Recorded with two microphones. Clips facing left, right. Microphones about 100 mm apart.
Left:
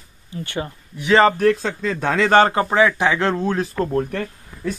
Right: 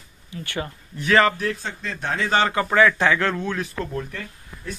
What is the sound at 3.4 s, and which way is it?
Speech, 35° left (ahead or behind).